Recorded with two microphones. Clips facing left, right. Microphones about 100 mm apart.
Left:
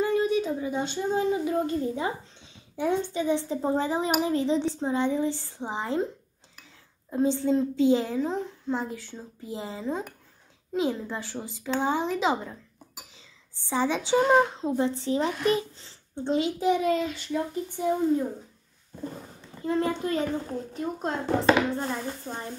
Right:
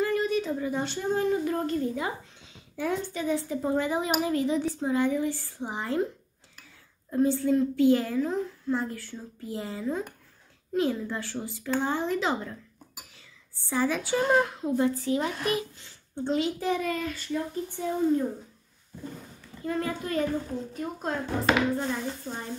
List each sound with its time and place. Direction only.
0.0 s speech: 20° left (ahead or behind)
2.0 s a sound: 25° left (ahead or behind)
2.8 s a child's voice: 20° left (ahead or behind)
7.1 s a child's voice: 20° left (ahead or behind)
19.6 s a child's voice: 25° left (ahead or behind)